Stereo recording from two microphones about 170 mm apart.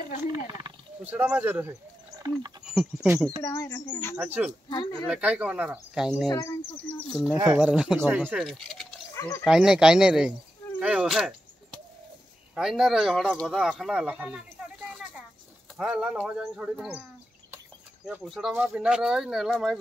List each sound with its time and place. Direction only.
0.2 s speech: 20° right (ahead or behind)
1.0 s speech: 10° right (ahead or behind)
2.1 s speech: 20° right (ahead or behind)
2.6 s speech: 5° right (ahead or behind)
3.3 s speech: 15° left (ahead or behind)
4.2 s speech: 10° right (ahead or behind)
6.2 s speech: 20° left (ahead or behind); by 8.6 s 5° right (ahead or behind)
9.1 s a sound: 15° left (ahead or behind)
9.4 s speech: 5° right (ahead or behind)
10.8 s a sound: 5° right (ahead or behind)
12.5 s speech: 5° right (ahead or behind)
14.9 s a sound: 5° right (ahead or behind)
15.8 s speech: centre (ahead or behind)
18.0 s speech: centre (ahead or behind)